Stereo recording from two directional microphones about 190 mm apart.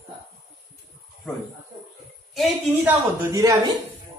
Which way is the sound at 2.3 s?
10° right (ahead or behind).